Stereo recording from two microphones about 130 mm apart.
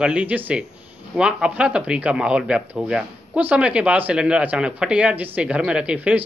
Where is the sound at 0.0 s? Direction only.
10° right (ahead or behind).